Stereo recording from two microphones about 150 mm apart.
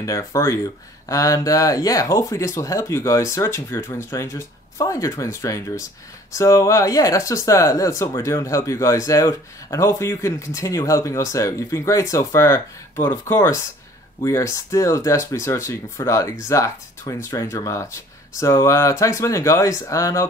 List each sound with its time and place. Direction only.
0.0 s speech: 20° left (ahead or behind)